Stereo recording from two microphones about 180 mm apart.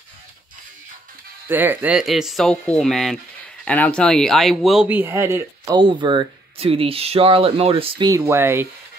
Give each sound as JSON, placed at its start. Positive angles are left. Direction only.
{"t": 1.5, "sound": "speech", "side_deg": -10}
{"t": 5.8, "sound": "speech", "side_deg": -25}
{"t": 8.1, "sound": "speech", "side_deg": -15}